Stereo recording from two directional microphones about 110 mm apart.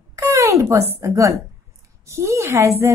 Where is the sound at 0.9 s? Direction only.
25° right (ahead or behind).